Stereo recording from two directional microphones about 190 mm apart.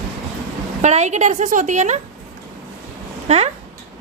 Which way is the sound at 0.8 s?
40° right (ahead or behind).